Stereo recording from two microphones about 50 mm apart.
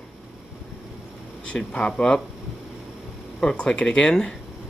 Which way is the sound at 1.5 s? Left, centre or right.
Centre.